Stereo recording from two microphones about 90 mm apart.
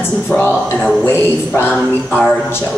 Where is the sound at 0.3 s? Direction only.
20° left (ahead or behind).